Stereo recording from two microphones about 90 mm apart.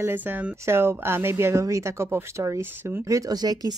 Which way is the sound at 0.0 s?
20° right (ahead or behind).